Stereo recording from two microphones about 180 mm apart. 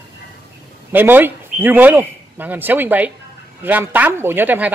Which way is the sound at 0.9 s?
10° right (ahead or behind).